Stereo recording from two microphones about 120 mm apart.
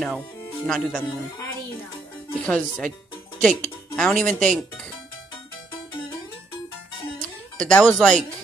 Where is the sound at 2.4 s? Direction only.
10° left (ahead or behind).